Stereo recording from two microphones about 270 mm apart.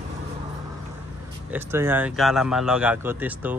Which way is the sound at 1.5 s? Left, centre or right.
Centre.